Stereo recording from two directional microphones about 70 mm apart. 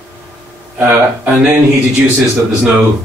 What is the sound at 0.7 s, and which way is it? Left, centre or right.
Speech, right.